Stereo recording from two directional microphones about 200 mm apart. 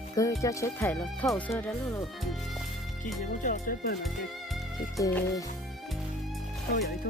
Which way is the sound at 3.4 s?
45° left (ahead or behind).